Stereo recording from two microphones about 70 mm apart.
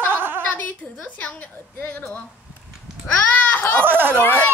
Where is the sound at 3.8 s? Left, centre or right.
Right.